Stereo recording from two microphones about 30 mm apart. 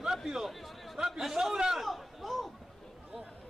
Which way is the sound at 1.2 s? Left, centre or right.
Centre.